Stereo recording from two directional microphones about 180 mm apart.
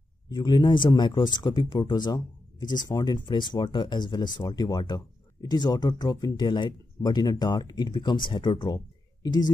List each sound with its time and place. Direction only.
0.3 s speech: 20° left (ahead or behind)